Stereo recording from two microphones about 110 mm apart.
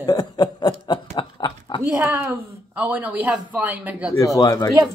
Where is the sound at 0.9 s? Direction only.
45° left (ahead or behind).